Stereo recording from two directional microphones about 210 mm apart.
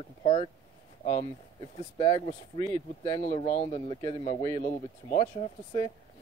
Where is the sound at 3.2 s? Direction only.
30° left (ahead or behind).